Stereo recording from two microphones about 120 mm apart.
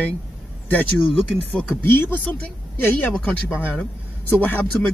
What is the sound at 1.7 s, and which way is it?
Speech, 15° left (ahead or behind).